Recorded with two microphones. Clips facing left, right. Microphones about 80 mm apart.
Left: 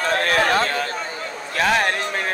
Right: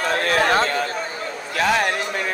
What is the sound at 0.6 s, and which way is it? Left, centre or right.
Speech, right.